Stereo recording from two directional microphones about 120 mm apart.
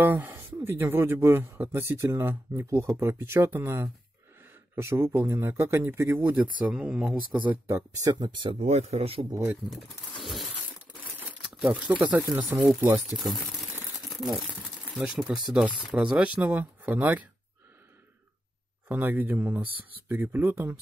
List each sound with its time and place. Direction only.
0.0 s speech: 15° right (ahead or behind)
7.6 s speech: 25° right (ahead or behind); by 8.5 s 40° right (ahead or behind)
8.5 s speech: 65° right (ahead or behind)
9.3 s speech: 25° right (ahead or behind)
9.7 s pigeon: centre (ahead or behind)
11.4 s crumpling: 5° right (ahead or behind)
11.9 s speech: 10° right (ahead or behind)
12.9 s pigeon: centre (ahead or behind)
15.0 s speech: 5° right (ahead or behind)
18.9 s speech: 15° right (ahead or behind)